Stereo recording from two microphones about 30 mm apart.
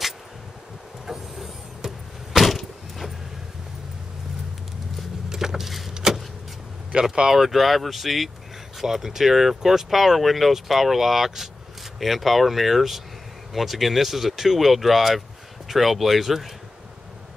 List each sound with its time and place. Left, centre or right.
1.0 s vehicle: centre
2.3 s a sound: centre
5.3 s vehicle: centre
7.0 s speech: centre
7.3 s speech: centre
8.8 s speech: centre